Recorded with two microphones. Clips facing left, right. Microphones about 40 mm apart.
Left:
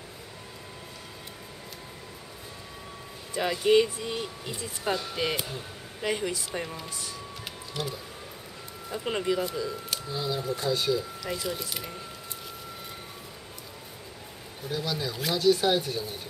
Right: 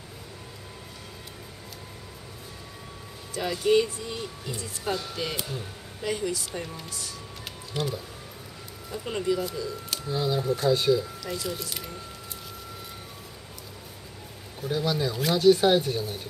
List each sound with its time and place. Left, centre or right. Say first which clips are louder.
3.3 s speech: left 1 dB; centre
5.9 s speech: even; centre
7.7 s speech: right 4 dB; centre
8.9 s speech: even; centre
10.0 s speech: right 5 dB; centre
11.0 s speech: right 1 dB; centre
14.6 s speech: right 5 dB; centre